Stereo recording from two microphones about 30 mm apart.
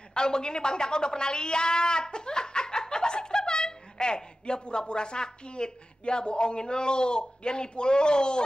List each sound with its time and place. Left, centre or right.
0.1 s a woman's voice: left